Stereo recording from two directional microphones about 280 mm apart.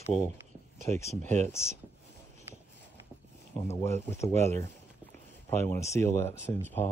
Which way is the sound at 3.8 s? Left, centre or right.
Centre.